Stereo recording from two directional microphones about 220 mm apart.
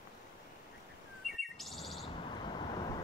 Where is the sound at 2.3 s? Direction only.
20° left (ahead or behind).